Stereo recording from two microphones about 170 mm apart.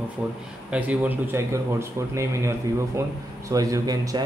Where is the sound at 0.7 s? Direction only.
10° right (ahead or behind).